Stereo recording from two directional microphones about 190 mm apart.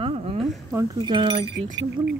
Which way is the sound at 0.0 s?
30° right (ahead or behind).